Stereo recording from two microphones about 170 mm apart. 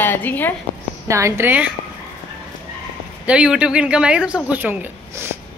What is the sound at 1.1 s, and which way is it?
Speech, 15° right (ahead or behind).